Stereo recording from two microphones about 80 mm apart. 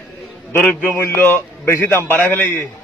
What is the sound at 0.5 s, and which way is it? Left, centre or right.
Speech, centre.